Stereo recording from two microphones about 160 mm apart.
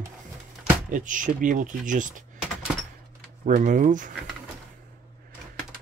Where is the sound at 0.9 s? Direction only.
55° right (ahead or behind).